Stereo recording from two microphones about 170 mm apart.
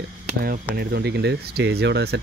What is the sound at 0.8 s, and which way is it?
Speech, 70° right (ahead or behind).